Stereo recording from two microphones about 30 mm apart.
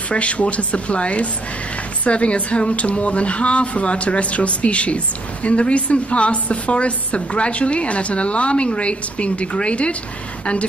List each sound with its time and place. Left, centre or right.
0.1 s speech: left